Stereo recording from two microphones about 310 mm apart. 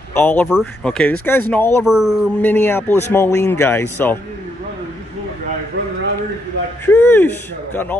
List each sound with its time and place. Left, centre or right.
0.1 s speech: centre
6.9 s speech: centre